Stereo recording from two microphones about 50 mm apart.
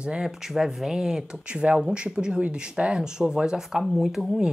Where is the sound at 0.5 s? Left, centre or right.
Centre.